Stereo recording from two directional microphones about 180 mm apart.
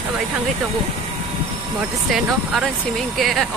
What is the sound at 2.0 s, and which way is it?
Speech, centre (ahead or behind).